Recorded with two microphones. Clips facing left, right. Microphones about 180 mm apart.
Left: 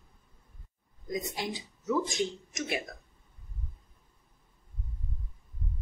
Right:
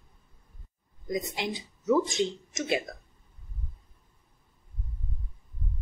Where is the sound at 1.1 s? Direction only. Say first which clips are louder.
Right 3 dB; 20° right (ahead or behind).